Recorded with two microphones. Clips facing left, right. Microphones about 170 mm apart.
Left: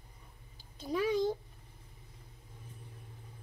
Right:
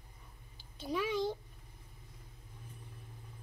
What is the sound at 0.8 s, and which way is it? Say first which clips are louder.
Speech: left 3 dB; 40° left (ahead or behind).